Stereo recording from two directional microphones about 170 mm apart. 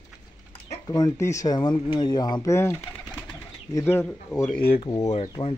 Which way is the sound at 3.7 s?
15° left (ahead or behind).